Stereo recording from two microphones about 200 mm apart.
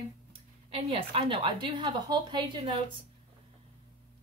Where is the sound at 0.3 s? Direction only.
30° right (ahead or behind).